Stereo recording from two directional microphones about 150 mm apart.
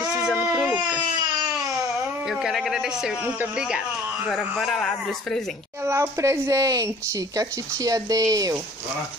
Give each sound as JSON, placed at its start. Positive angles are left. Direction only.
{"t": 0.2, "sound": "baby cry", "side_deg": -5}
{"t": 2.2, "sound": "speech", "side_deg": 0}
{"t": 5.9, "sound": "speech", "side_deg": -20}